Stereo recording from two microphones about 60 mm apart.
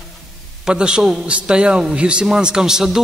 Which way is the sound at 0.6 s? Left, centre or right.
Centre.